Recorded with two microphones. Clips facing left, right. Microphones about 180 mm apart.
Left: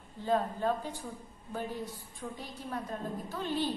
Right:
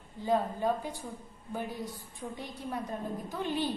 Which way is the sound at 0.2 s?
10° right (ahead or behind).